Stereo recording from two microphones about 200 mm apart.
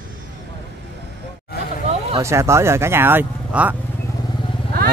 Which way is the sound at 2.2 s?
15° right (ahead or behind).